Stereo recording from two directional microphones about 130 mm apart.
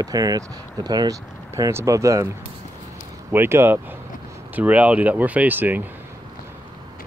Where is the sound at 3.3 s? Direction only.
20° right (ahead or behind).